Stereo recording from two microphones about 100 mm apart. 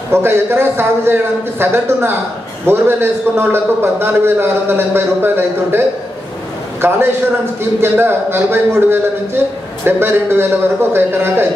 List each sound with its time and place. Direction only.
0.1 s a man's voice: 25° right (ahead or behind)